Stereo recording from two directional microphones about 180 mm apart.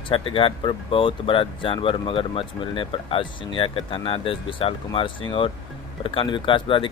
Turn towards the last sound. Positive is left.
turn(degrees=25)  # may be behind; listen again after turning